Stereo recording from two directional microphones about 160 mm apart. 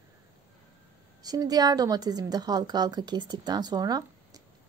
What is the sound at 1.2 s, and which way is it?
A woman's voice, 25° right (ahead or behind).